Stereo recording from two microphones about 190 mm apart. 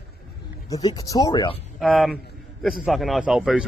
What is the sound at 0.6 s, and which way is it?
Speech, 20° left (ahead or behind).